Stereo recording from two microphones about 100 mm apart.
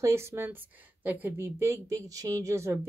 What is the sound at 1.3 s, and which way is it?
Speech, 30° right (ahead or behind).